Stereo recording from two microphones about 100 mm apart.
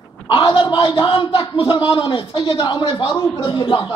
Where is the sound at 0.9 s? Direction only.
60° left (ahead or behind).